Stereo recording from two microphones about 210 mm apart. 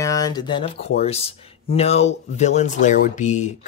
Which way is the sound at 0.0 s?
15° left (ahead or behind).